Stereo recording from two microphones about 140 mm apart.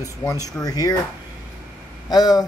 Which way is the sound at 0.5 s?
25° left (ahead or behind).